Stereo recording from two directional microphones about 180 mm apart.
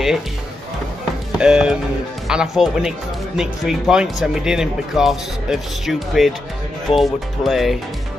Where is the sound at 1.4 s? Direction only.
5° right (ahead or behind).